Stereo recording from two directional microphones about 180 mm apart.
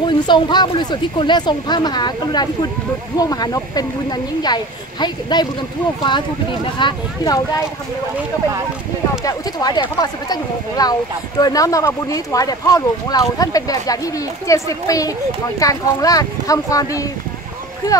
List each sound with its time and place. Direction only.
0.0 s speech: 25° left (ahead or behind)
6.8 s speech: 25° left (ahead or behind)
9.2 s speech: 20° left (ahead or behind)